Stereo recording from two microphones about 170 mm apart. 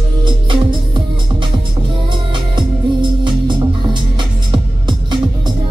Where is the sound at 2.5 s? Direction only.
30° right (ahead or behind).